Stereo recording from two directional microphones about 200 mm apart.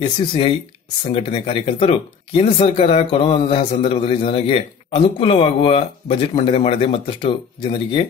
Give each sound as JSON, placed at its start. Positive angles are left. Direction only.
{"t": 0.0, "sound": "speech", "side_deg": 25}